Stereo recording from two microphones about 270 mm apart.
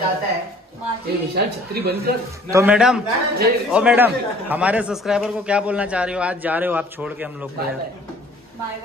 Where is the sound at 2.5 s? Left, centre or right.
Centre.